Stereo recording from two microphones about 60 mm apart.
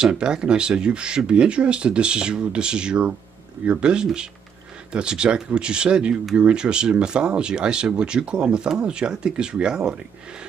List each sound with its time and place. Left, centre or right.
0.0 s speech: centre